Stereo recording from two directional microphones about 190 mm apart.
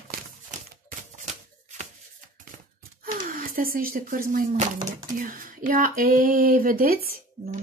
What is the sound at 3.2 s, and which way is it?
Speech, 50° right (ahead or behind).